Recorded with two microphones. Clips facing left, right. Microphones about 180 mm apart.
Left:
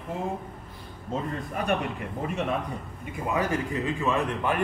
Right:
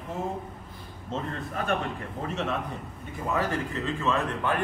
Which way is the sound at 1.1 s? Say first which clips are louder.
Left 2 dB; 15° left (ahead or behind).